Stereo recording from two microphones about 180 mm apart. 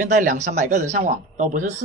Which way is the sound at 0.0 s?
45° right (ahead or behind).